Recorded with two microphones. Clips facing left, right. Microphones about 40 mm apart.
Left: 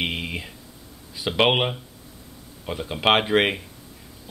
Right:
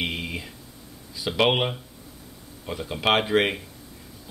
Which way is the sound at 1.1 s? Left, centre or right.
Left.